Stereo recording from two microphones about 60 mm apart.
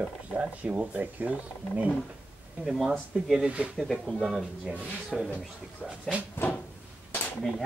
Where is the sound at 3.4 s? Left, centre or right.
Centre.